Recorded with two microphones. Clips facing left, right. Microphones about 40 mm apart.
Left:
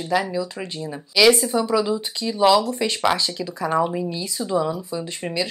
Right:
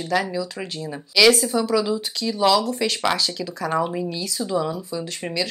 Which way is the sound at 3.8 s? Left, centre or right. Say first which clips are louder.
Left 2 dB; centre.